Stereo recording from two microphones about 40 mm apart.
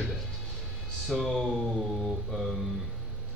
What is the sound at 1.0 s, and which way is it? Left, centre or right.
Mantra, centre.